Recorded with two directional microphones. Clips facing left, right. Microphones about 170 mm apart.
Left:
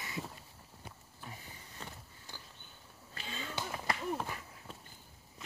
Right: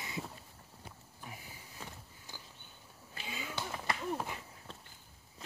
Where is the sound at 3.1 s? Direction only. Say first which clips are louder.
Even; 10° right (ahead or behind).